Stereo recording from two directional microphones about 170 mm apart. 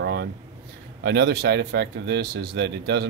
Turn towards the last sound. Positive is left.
turn(degrees=-85)